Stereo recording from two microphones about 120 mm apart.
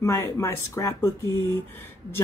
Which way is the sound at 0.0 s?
25° left (ahead or behind).